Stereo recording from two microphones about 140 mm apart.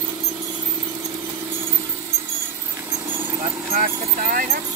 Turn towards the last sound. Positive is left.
turn(degrees=-85)